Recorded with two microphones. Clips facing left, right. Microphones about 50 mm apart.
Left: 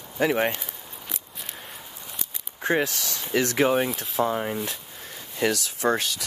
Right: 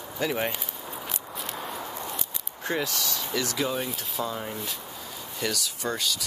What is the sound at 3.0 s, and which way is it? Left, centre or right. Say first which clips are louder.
Speech: right 2 dB; right.